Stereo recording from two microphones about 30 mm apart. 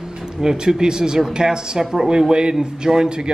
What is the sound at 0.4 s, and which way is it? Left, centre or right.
Speech, right.